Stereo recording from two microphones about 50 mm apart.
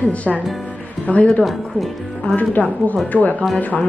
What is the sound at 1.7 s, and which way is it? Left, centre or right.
Speech, centre.